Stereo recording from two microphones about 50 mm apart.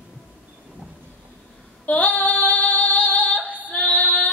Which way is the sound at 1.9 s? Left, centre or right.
Left.